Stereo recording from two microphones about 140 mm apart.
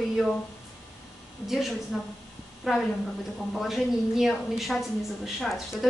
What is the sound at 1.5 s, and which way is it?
A woman's voice, centre (ahead or behind).